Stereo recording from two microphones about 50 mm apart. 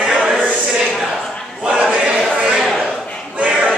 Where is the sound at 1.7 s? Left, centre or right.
Right.